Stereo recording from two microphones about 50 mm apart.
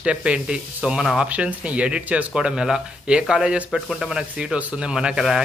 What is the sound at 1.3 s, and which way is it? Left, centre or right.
Speech, right.